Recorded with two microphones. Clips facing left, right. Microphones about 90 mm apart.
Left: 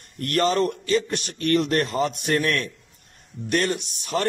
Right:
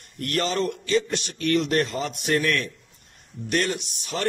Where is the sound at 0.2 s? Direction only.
50° left (ahead or behind).